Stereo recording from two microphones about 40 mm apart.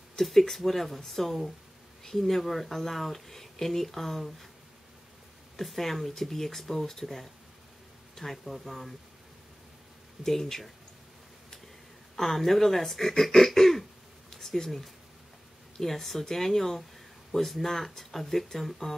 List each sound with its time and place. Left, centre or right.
0.2 s speech: centre
5.6 s speech: centre
10.2 s speech: centre
12.2 s speech: centre
13.5 s throat clearing: centre
14.3 s a sound: centre
15.8 s speech: centre